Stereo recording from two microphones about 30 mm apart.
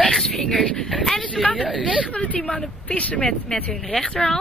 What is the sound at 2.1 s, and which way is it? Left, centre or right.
Speech, left.